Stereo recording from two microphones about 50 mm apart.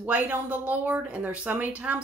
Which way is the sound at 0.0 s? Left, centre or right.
Right.